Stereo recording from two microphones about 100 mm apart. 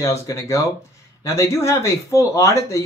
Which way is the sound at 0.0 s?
35° left (ahead or behind).